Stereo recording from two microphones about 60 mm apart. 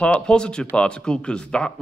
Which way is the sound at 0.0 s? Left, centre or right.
Centre.